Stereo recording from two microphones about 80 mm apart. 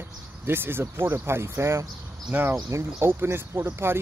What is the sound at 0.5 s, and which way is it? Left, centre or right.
Speech, right.